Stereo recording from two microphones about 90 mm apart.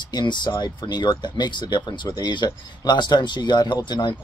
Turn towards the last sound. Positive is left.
turn(degrees=60)  # may be behind; listen again after turning